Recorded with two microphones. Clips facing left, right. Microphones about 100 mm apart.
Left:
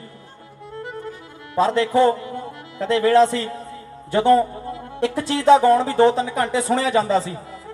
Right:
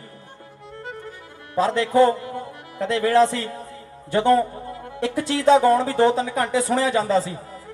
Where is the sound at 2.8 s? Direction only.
15° right (ahead or behind).